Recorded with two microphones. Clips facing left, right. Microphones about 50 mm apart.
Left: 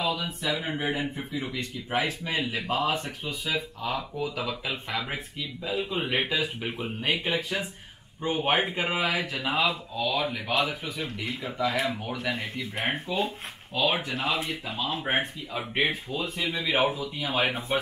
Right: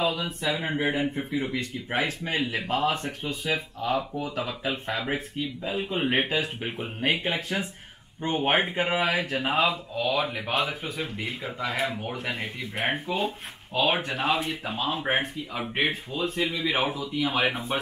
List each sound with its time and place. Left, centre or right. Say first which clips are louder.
0.0 s speech: right 2 dB; right
16.4 s a man's voice: left 6 dB; left
17.1 s speech: right 2 dB; right